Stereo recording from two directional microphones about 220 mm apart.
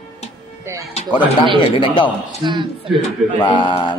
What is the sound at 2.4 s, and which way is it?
Speech, 20° right (ahead or behind).